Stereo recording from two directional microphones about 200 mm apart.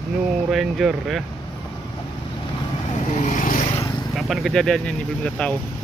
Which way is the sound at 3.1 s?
40° left (ahead or behind).